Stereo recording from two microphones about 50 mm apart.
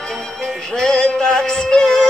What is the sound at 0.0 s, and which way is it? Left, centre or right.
Music, centre.